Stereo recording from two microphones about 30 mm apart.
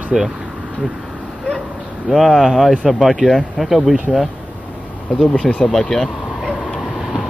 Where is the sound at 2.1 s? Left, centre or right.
Centre.